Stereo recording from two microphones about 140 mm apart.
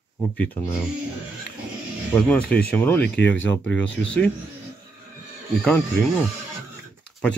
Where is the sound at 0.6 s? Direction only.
25° left (ahead or behind).